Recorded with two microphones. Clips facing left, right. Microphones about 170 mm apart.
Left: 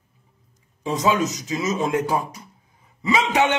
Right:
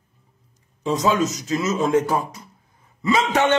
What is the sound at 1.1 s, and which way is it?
Speech, 15° left (ahead or behind).